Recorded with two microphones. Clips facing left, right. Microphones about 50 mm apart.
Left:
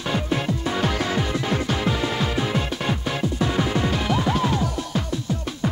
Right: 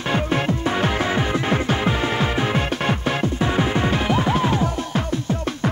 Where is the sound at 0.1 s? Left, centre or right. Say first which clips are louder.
Right 3 dB; right.